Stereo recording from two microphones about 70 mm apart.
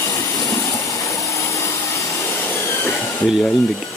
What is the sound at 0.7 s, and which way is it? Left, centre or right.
Vacuum cleaner, left.